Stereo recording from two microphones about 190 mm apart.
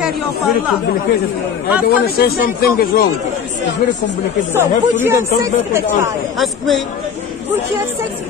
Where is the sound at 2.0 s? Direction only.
55° left (ahead or behind).